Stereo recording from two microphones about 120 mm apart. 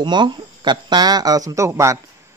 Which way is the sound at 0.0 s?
40° right (ahead or behind).